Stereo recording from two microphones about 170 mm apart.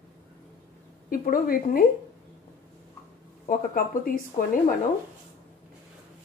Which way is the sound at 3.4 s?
55° left (ahead or behind).